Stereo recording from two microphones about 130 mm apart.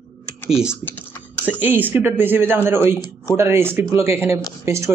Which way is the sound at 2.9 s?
25° left (ahead or behind).